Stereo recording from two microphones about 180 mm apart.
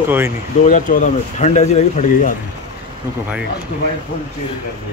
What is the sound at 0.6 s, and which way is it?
Speech, 45° left (ahead or behind).